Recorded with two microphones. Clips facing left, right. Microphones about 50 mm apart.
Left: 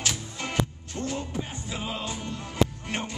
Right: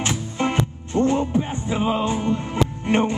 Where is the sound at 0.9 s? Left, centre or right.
Right.